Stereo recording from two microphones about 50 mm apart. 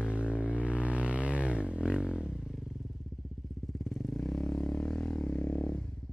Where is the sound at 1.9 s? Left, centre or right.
Centre.